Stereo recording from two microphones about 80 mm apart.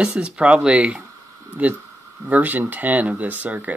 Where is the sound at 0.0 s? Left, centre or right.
Centre.